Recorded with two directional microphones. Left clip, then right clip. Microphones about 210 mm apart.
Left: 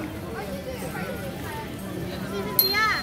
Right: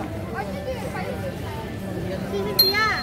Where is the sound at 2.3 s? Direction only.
50° right (ahead or behind).